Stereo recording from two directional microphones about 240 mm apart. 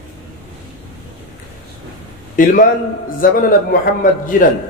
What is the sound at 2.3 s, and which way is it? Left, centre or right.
A man's voice, left.